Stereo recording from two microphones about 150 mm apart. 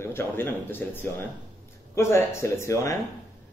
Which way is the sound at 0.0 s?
15° left (ahead or behind).